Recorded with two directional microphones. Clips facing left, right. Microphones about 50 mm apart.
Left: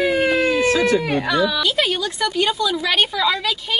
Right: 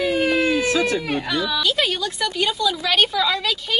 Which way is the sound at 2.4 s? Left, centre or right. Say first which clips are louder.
Right 1 dB; left.